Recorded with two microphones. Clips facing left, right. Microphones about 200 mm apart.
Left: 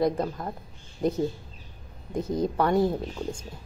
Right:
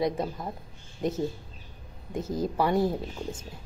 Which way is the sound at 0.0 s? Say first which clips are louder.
Left 3 dB; centre (ahead or behind).